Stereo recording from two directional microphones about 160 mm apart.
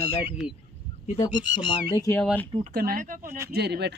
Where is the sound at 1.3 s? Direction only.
30° left (ahead or behind).